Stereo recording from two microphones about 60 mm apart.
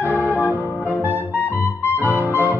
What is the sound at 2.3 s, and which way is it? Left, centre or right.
Music, left.